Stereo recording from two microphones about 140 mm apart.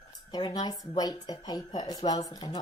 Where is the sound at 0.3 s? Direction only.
30° left (ahead or behind).